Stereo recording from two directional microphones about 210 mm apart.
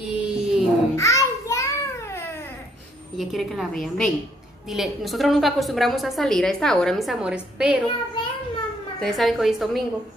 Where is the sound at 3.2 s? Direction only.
Centre (ahead or behind).